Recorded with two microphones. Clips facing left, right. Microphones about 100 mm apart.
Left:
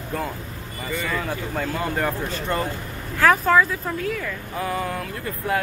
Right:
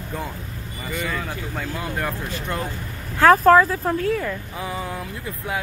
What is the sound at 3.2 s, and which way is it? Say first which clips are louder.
Speech: right 4 dB; 40° right (ahead or behind).